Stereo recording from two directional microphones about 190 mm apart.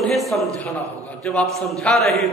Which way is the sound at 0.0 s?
Centre (ahead or behind).